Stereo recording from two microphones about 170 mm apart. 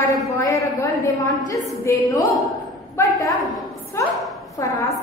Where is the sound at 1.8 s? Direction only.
20° left (ahead or behind).